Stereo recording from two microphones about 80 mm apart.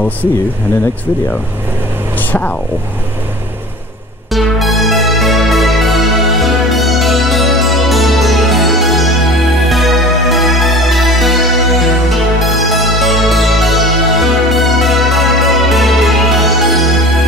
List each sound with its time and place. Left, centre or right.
2.1 s vehicle: left
4.3 s music: centre